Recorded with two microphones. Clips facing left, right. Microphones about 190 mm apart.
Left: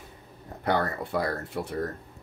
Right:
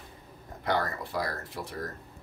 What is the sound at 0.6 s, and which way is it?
Speech, 60° left (ahead or behind).